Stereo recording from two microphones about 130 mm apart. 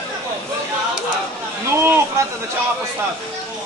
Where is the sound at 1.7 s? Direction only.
20° right (ahead or behind).